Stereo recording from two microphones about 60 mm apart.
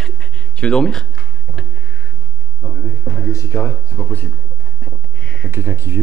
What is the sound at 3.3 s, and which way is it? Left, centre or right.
Speech, left.